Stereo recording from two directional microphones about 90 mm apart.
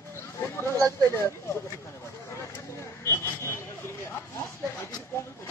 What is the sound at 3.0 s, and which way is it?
Vehicle, 30° left (ahead or behind).